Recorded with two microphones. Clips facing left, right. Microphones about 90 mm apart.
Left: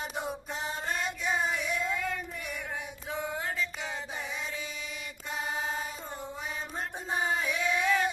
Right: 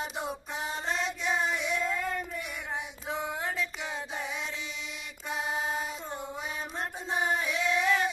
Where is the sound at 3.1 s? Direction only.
10° right (ahead or behind).